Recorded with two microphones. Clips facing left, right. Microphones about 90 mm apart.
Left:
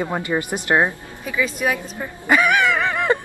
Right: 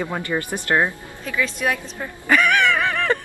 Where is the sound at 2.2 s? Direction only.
15° left (ahead or behind).